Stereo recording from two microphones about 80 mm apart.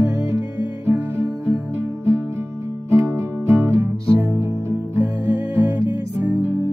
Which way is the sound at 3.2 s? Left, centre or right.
Right.